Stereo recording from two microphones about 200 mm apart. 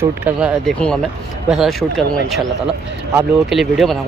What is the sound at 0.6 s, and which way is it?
Speech, 5° left (ahead or behind).